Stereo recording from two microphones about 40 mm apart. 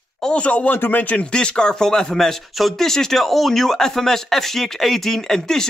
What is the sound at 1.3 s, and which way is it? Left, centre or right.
Speech, left.